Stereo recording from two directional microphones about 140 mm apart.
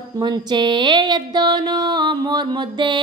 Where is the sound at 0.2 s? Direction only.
30° right (ahead or behind).